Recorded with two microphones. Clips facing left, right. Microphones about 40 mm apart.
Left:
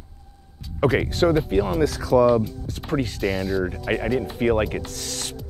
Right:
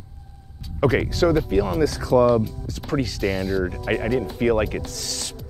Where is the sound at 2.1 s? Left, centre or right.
Left.